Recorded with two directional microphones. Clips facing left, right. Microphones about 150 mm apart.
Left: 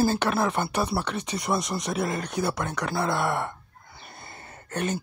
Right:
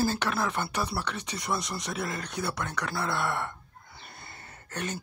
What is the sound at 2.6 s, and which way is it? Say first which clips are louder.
Speech: left 4 dB; 45° left (ahead or behind).